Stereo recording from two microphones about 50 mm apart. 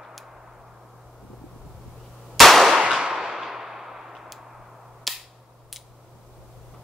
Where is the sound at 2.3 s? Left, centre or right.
Centre.